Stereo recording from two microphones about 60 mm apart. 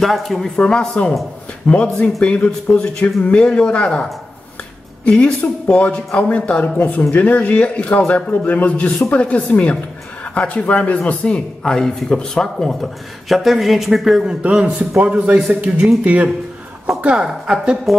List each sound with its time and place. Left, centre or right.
0.0 s speech: centre
0.6 s a man's voice: centre
14.2 s a man's voice: centre